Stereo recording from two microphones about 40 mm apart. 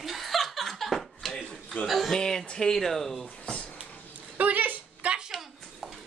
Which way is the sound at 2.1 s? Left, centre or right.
Centre.